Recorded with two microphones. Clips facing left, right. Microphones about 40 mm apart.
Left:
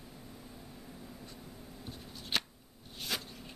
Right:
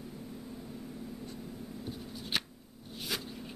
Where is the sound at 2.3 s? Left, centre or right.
Centre.